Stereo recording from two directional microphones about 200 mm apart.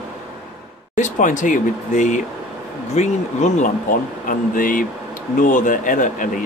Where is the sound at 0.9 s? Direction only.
40° left (ahead or behind).